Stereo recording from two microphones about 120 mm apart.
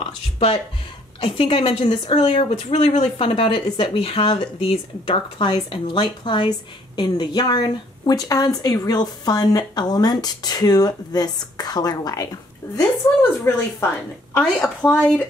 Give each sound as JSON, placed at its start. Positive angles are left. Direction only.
{"t": 1.2, "sound": "speech", "side_deg": 50}
{"t": 3.0, "sound": "speech", "side_deg": 50}
{"t": 14.3, "sound": "speech", "side_deg": 5}